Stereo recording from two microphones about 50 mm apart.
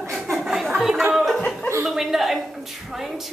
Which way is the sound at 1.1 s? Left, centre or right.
Centre.